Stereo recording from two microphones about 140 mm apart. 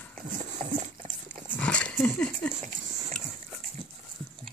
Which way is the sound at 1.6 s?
10° left (ahead or behind).